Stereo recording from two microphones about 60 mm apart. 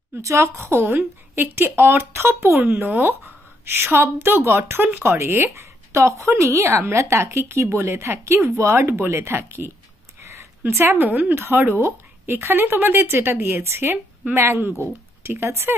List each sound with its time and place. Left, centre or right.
0.2 s a woman's voice: right
0.6 s speech: right
8.7 s speech: right
10.7 s speech: right